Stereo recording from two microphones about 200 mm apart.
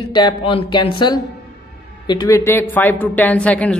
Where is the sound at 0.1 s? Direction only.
20° left (ahead or behind).